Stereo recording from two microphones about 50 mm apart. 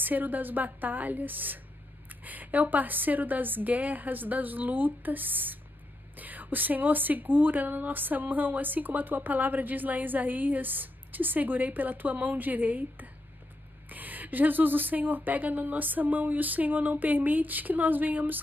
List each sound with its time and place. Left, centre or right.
0.0 s a woman's voice: right